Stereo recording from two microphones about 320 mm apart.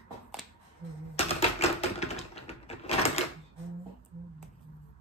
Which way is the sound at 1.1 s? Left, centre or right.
Centre.